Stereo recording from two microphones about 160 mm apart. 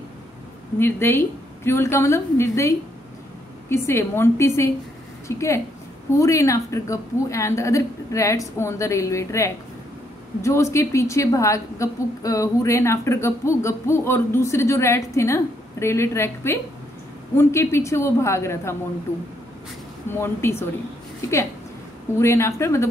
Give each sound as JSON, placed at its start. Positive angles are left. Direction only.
{"t": 0.7, "sound": "a woman's voice", "side_deg": 15}
{"t": 20.1, "sound": "a woman's voice", "side_deg": 15}
{"t": 22.2, "sound": "a woman's voice", "side_deg": 15}